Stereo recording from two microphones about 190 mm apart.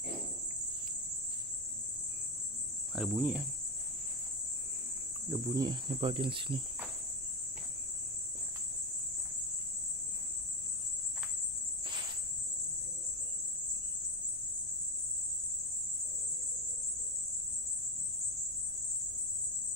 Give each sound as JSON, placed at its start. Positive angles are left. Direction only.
{"t": 2.9, "sound": "cricket", "side_deg": 0}
{"t": 5.3, "sound": "cricket", "side_deg": -15}